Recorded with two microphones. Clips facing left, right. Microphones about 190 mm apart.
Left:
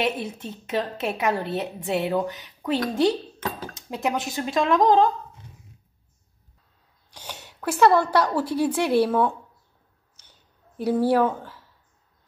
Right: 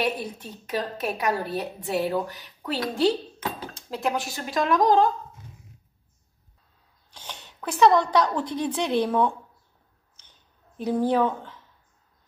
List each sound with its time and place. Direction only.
0.0 s a woman's voice: 25° left (ahead or behind)
7.1 s speech: 10° left (ahead or behind)
11.1 s speech: 10° left (ahead or behind)